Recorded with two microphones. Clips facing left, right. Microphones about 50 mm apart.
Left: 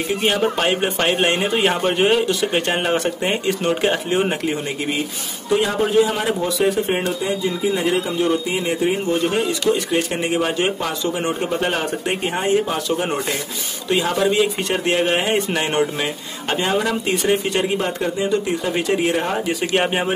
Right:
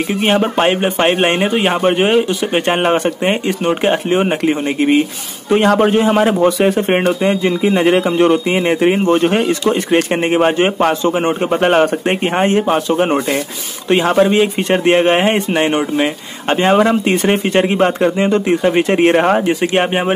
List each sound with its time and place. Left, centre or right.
0.2 s speech: right
1.5 s speech: centre
5.7 s a man's voice: right
15.7 s speech: centre
16.4 s a man's voice: right
18.5 s a man's voice: right
18.9 s speech: right
19.4 s a man's voice: right
19.8 s speech: centre